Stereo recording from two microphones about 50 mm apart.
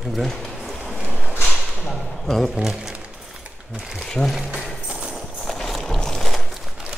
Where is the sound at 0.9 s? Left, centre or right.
Right.